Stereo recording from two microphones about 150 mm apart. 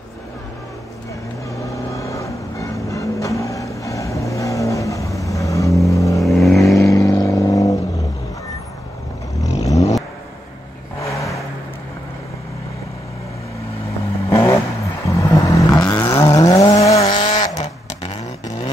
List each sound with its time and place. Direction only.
1.6 s vehicle: 20° left (ahead or behind)
6.1 s vehicle: centre (ahead or behind)
6.8 s vehicle: 25° left (ahead or behind)
9.7 s vehicle: 20° left (ahead or behind)
11.0 s vehicle: 20° left (ahead or behind)
14.3 s vehicle: 20° left (ahead or behind)
17.0 s vehicle: 35° left (ahead or behind)
17.6 s vehicle: 45° left (ahead or behind)